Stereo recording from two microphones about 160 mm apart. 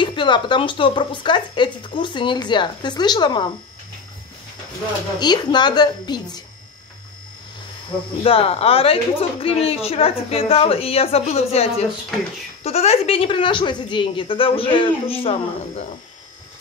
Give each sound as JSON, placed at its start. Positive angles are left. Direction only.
{"t": 0.0, "sound": "speech", "side_deg": 30}
{"t": 5.2, "sound": "speech", "side_deg": 25}
{"t": 8.2, "sound": "a woman's voice", "side_deg": 35}